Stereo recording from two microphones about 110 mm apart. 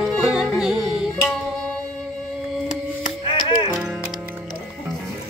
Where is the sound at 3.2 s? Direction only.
50° left (ahead or behind).